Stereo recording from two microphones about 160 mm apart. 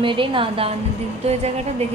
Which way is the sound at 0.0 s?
30° right (ahead or behind).